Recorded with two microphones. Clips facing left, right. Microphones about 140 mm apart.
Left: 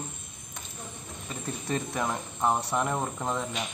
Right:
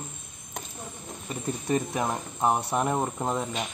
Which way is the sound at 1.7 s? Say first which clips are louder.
Right 3 dB; 20° right (ahead or behind).